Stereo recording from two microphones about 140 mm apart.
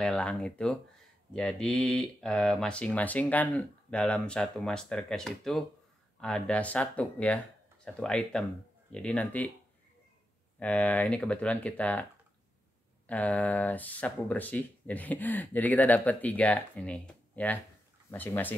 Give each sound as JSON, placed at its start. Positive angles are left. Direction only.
{"t": 0.0, "sound": "speech", "side_deg": 10}
{"t": 10.6, "sound": "speech", "side_deg": 10}